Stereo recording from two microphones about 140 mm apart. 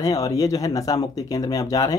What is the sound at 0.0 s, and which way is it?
Speech, 25° left (ahead or behind).